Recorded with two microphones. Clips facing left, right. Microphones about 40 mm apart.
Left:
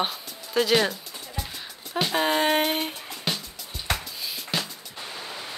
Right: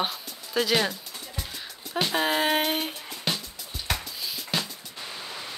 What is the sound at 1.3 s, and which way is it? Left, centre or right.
Music, centre.